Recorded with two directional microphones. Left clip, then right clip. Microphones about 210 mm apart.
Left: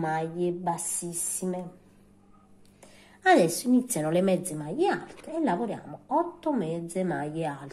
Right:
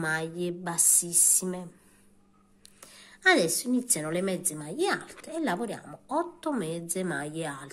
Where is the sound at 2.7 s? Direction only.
25° right (ahead or behind).